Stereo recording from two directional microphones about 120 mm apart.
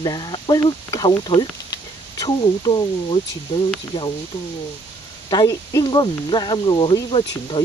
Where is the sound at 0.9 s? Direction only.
30° left (ahead or behind).